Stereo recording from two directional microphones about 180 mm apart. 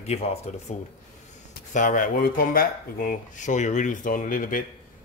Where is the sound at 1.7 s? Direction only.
45° left (ahead or behind).